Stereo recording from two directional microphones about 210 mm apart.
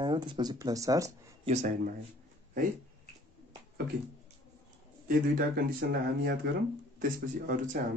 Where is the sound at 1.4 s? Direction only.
35° right (ahead or behind).